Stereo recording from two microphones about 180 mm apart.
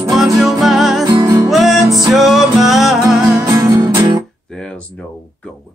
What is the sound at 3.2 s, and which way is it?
Music, 15° right (ahead or behind).